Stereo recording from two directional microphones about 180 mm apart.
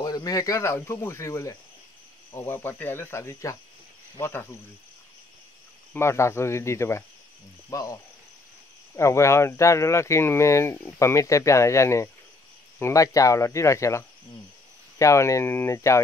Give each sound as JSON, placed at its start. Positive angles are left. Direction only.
{"t": 0.0, "sound": "speech", "side_deg": 20}
{"t": 5.9, "sound": "speech", "side_deg": 15}
{"t": 7.7, "sound": "cricket", "side_deg": 20}
{"t": 8.9, "sound": "speech", "side_deg": 15}